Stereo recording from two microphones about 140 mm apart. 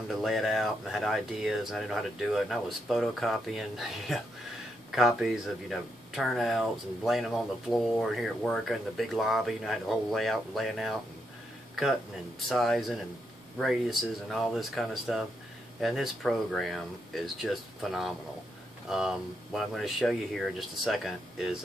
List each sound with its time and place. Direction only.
0.1 s speech: centre (ahead or behind)
12.4 s speech: centre (ahead or behind)